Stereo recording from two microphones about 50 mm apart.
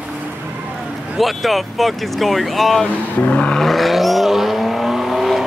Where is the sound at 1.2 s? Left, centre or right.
Centre.